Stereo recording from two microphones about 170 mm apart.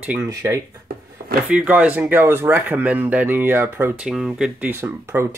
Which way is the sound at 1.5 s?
5° right (ahead or behind).